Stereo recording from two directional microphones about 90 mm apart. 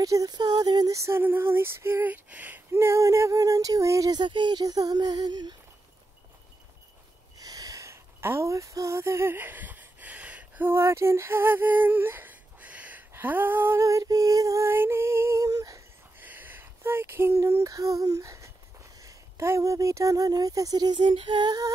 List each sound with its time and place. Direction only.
0.0 s female singing: 40° right (ahead or behind)
1.0 s female singing: 25° right (ahead or behind)
4.1 s female singing: 60° right (ahead or behind)
7.3 s a sound: 40° right (ahead or behind); by 10.7 s 15° right (ahead or behind)
10.7 s a sound: 30° right (ahead or behind)
13.7 s speech: 35° right (ahead or behind)
14.7 s speech: 25° right (ahead or behind)
16.2 s a sound: 20° right (ahead or behind)
17.4 s speech: 35° right (ahead or behind); by 21.5 s 65° right (ahead or behind)